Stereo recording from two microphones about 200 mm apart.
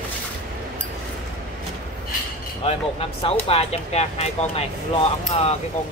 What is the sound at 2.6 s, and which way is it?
Speech, 30° left (ahead or behind).